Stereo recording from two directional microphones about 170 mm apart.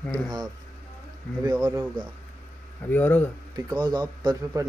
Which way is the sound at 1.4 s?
20° right (ahead or behind).